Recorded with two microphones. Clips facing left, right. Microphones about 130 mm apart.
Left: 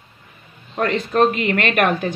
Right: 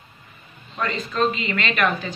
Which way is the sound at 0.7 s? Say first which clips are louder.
Left 7 dB; 60° left (ahead or behind).